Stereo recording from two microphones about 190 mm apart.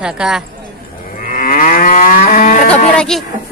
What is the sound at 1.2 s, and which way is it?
Moo, 50° left (ahead or behind).